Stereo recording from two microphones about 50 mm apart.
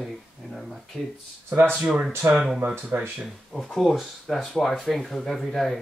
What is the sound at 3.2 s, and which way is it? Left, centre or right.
Speech, centre.